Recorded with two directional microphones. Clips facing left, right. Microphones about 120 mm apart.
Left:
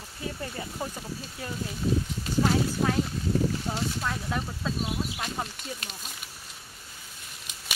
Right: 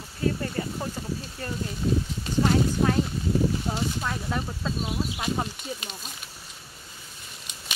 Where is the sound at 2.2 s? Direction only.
Centre (ahead or behind).